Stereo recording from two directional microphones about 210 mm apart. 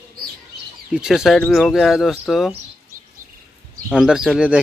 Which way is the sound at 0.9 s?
5° right (ahead or behind).